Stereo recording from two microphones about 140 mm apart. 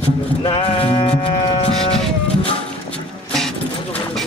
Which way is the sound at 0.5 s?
40° left (ahead or behind).